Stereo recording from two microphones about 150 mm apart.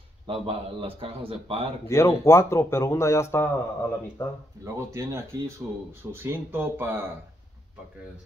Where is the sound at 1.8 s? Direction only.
15° left (ahead or behind).